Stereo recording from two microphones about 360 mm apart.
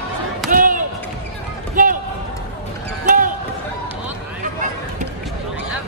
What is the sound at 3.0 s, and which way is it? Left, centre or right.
Basketball bounce, right.